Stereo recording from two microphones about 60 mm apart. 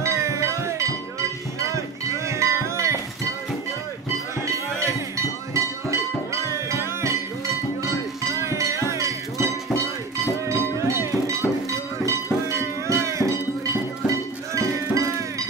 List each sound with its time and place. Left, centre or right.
0.0 s music: right
1.7 s cowbell: right
4.9 s cowbell: right
6.5 s music: right
8.4 s cowbell: right
10.5 s music: right
14.1 s cowbell: right